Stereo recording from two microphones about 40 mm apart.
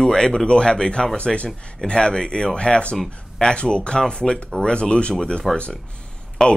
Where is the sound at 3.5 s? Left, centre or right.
Left.